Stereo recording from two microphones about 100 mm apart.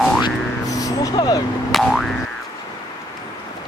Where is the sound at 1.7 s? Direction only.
5° left (ahead or behind).